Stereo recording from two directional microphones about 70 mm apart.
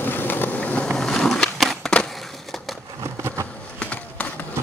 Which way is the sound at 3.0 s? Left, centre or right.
Right.